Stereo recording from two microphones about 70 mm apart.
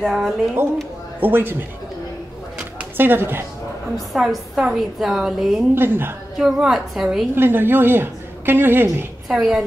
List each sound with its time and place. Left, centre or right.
0.0 s a woman's voice: centre
1.2 s a man's voice: right
2.8 s speech: right
4.2 s a woman's voice: centre
5.8 s a woman's voice: right
6.3 s a woman's voice: centre
7.3 s a woman's voice: right
9.3 s a woman's voice: centre